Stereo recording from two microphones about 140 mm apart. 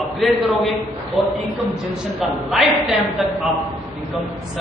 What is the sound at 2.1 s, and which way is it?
A woman's voice, centre (ahead or behind).